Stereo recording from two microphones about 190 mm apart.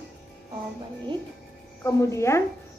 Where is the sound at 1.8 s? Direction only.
15° left (ahead or behind).